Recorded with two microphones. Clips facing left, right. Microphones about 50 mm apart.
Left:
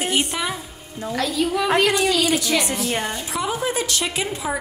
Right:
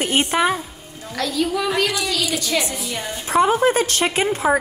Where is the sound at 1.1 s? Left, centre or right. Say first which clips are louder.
Even; centre.